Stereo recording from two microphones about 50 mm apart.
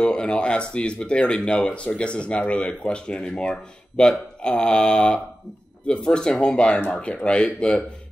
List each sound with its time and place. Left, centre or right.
0.0 s speech: centre
4.4 s a sound: centre
5.9 s speech: centre